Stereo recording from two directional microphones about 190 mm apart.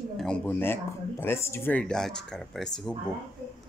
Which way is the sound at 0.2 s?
10° left (ahead or behind).